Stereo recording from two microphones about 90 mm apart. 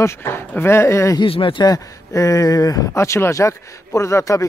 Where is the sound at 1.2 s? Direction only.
75° left (ahead or behind).